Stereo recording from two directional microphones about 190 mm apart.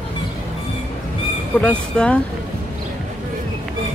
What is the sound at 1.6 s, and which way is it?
Speech, 5° left (ahead or behind).